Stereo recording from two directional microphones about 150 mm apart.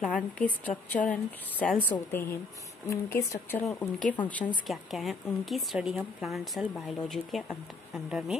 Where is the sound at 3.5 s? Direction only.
20° left (ahead or behind).